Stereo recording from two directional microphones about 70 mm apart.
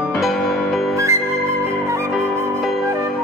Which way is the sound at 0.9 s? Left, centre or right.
Right.